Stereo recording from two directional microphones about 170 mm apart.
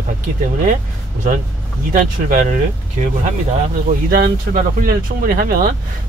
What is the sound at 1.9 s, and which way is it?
Speech, 45° right (ahead or behind).